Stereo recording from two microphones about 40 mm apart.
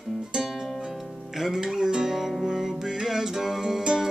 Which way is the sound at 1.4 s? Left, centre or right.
Centre.